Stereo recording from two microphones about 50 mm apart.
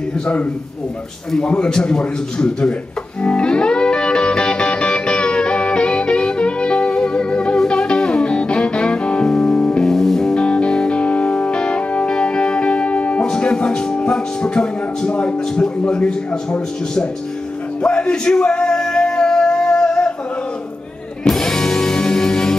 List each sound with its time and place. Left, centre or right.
1.5 s a man's voice: centre
3.2 s music: left
9.8 s music: centre
17.8 s male singing: left
21.3 s music: centre